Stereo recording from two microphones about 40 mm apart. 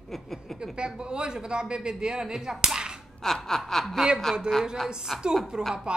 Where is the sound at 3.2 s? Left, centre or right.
Centre.